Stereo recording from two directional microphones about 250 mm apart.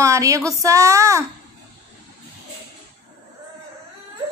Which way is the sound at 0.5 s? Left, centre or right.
Centre.